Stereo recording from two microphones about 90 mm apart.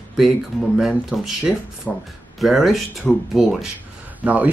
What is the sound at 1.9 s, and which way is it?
Speech, 5° left (ahead or behind).